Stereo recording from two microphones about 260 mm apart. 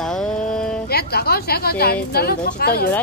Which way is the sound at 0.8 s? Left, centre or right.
Left.